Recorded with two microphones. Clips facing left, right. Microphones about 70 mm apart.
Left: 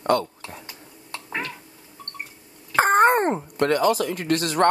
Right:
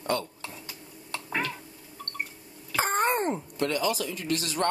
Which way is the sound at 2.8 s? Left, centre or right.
Left.